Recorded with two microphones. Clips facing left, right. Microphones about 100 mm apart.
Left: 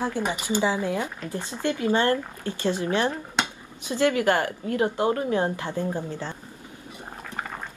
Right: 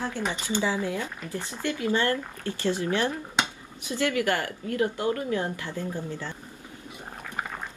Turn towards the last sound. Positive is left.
turn(degrees=55)  # may be behind; listen again after turning